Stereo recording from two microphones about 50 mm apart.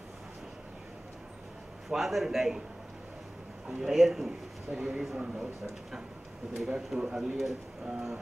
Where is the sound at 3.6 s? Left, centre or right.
Centre.